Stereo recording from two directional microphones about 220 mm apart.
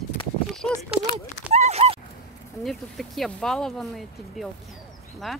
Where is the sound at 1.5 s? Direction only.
30° right (ahead or behind).